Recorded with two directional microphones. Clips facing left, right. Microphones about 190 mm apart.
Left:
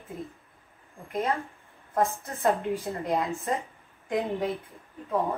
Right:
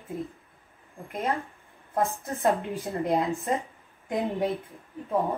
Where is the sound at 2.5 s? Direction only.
Centre (ahead or behind).